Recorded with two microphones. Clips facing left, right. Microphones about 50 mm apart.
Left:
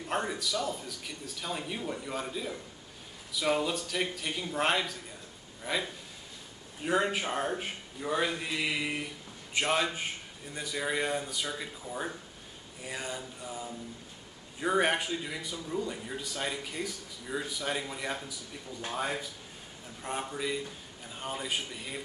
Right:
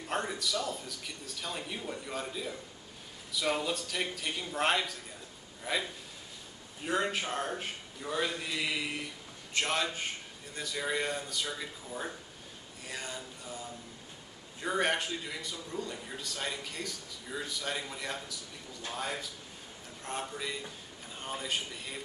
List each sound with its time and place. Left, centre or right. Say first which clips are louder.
0.1 s a man's voice: left 1 dB; centre